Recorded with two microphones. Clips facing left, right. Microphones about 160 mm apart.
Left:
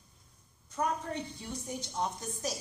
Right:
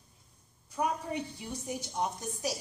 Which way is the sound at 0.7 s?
10° right (ahead or behind).